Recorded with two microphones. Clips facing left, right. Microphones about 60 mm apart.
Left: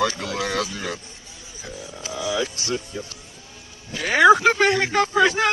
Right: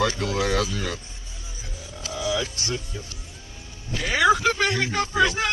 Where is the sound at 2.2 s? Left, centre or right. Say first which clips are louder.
Left 2 dB; left.